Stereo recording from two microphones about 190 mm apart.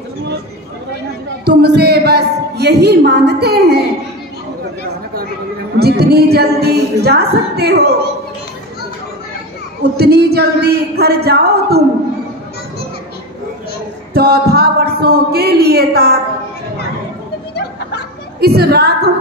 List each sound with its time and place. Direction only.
1.4 s a woman's voice: 55° right (ahead or behind)
5.8 s speech: 55° right (ahead or behind)
9.9 s speech: 55° right (ahead or behind)
14.1 s music: 55° right (ahead or behind)
14.5 s speech: 55° right (ahead or behind)
18.4 s speech: 55° right (ahead or behind)